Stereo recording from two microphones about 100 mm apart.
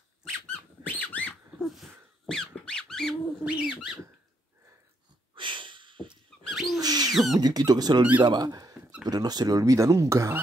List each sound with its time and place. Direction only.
0.2 s squeak: 10° left (ahead or behind)
3.4 s bird: 10° right (ahead or behind)
5.3 s snort: 55° right (ahead or behind)
6.4 s rodents: centre (ahead or behind)
6.8 s a sound: 40° right (ahead or behind)
7.3 s speech: 40° right (ahead or behind)